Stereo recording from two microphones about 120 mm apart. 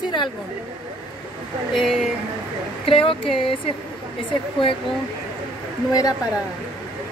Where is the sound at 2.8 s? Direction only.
50° left (ahead or behind).